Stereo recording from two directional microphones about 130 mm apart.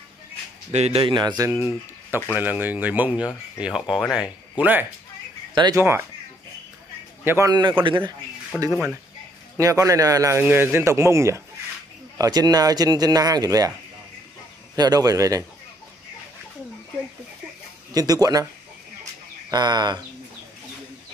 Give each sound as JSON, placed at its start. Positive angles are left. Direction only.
{"t": 0.7, "sound": "speech", "side_deg": -55}
{"t": 1.6, "sound": "speech", "side_deg": -15}
{"t": 4.1, "sound": "speech", "side_deg": -10}
{"t": 5.5, "sound": "speech", "side_deg": -35}
{"t": 5.8, "sound": "speech", "side_deg": -20}
{"t": 7.2, "sound": "speech", "side_deg": -20}
{"t": 7.8, "sound": "speech", "side_deg": -40}
{"t": 8.6, "sound": "speech", "side_deg": -10}
{"t": 9.6, "sound": "speech", "side_deg": -25}
{"t": 14.8, "sound": "speech", "side_deg": -30}
{"t": 17.9, "sound": "speech", "side_deg": -30}
{"t": 19.5, "sound": "speech", "side_deg": -35}